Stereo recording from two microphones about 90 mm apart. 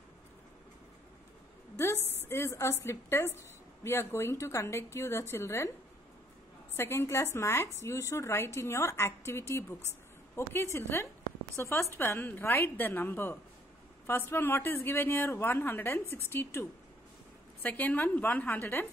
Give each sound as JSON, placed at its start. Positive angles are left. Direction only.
{"t": 1.8, "sound": "a woman's voice", "side_deg": 25}
{"t": 6.8, "sound": "a woman's voice", "side_deg": 30}
{"t": 17.6, "sound": "a woman's voice", "side_deg": 20}